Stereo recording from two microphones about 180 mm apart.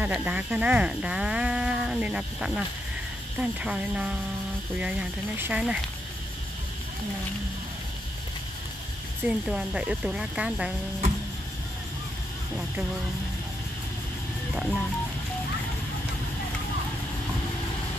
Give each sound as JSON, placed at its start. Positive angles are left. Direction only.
{"t": 0.0, "sound": "speech", "side_deg": -10}
{"t": 9.2, "sound": "speech", "side_deg": -5}
{"t": 14.5, "sound": "speech", "side_deg": -5}